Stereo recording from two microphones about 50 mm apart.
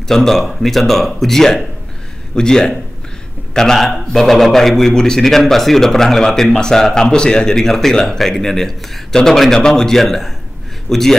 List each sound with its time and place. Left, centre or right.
0.1 s a man's voice: centre